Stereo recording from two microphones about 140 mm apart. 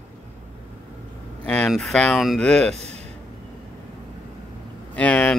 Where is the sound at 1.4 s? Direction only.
5° left (ahead or behind).